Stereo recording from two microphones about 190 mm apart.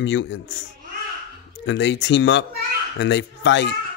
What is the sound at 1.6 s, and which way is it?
Speech, 70° left (ahead or behind).